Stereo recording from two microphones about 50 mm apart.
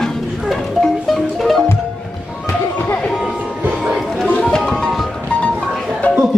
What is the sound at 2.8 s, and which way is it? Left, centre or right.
Music, left.